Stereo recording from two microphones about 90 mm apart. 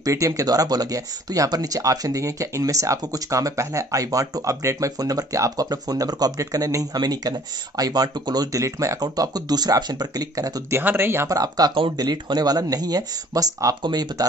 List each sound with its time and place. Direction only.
0.0 s speech: 40° right (ahead or behind)
10.7 s speech: 25° right (ahead or behind)
11.2 s speech: 45° right (ahead or behind)